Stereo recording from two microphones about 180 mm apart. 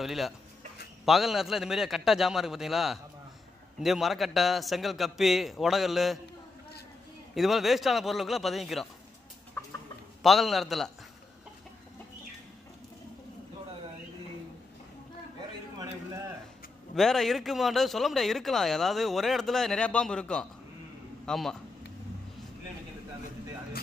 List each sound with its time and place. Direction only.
0.0 s speech: centre (ahead or behind)
7.3 s speech: centre (ahead or behind)
10.2 s speech: centre (ahead or behind)
15.8 s a sound: 20° right (ahead or behind)
16.9 s speech: centre (ahead or behind)